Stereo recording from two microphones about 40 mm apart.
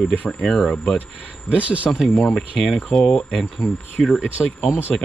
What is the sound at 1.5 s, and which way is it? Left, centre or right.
Speech, right.